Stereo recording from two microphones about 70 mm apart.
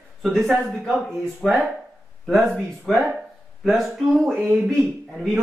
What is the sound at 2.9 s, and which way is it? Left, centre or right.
Speech, centre.